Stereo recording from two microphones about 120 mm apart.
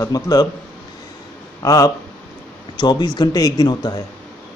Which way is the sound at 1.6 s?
30° left (ahead or behind).